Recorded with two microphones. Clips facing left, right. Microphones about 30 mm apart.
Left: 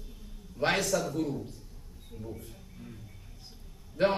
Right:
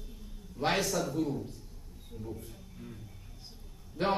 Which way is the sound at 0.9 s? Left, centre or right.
Centre.